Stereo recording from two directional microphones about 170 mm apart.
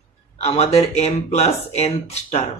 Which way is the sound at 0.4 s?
40° left (ahead or behind).